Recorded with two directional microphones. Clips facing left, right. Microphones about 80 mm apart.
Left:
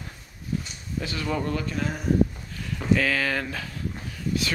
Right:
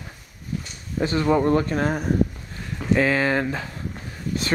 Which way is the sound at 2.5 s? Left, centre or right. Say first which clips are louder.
Right 2 dB; right.